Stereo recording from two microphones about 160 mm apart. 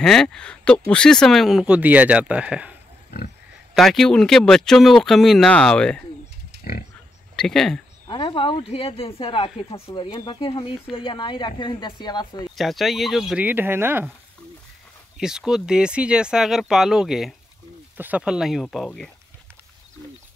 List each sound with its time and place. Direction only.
0.0 s speech: 5° left (ahead or behind)
3.7 s speech: centre (ahead or behind)
6.5 s a sound: 90° right
7.3 s speech: 5° left (ahead or behind)
8.1 s speech: 30° left (ahead or behind)
12.5 s speech: centre (ahead or behind)
15.1 s speech: 5° right (ahead or behind)